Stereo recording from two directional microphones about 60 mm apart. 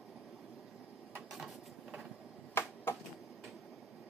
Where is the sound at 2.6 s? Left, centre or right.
Left.